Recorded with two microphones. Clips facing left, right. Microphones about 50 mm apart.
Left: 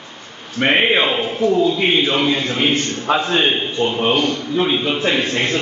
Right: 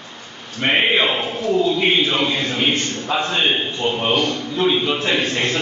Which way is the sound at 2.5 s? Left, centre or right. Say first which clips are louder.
Left 2 dB; left.